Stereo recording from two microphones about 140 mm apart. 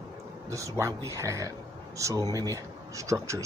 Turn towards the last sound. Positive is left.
turn(degrees=-20)  # may be behind; listen again after turning